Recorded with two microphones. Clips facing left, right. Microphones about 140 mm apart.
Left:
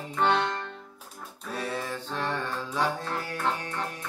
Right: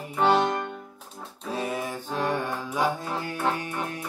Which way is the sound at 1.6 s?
15° right (ahead or behind).